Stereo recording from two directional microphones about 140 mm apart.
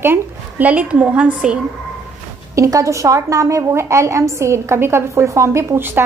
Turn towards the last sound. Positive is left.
turn(degrees=-15)  # may be behind; listen again after turning